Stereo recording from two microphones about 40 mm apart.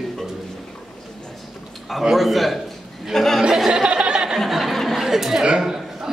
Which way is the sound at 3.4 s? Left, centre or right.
Centre.